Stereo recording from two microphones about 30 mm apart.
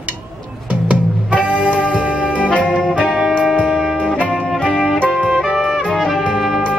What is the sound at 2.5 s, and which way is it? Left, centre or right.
Music, left.